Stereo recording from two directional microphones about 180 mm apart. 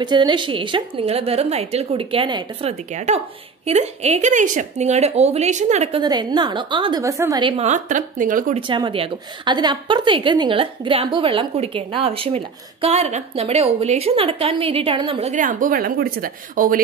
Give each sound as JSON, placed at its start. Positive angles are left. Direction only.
{"t": 0.0, "sound": "a woman's voice", "side_deg": -25}
{"t": 2.9, "sound": "a woman's voice", "side_deg": -40}
{"t": 6.0, "sound": "a woman's voice", "side_deg": -25}
{"t": 7.5, "sound": "speech", "side_deg": -40}
{"t": 8.5, "sound": "a woman's voice", "side_deg": -25}